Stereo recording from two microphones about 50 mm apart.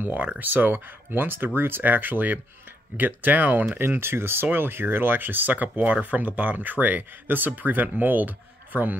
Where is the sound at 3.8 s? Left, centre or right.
Right.